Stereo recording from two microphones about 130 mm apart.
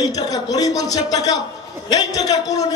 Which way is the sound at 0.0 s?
30° left (ahead or behind).